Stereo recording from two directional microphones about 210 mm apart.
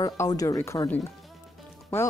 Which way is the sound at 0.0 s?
15° left (ahead or behind).